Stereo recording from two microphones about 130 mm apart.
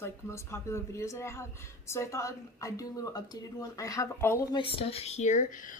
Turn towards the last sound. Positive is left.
turn(degrees=65)  # may be behind; listen again after turning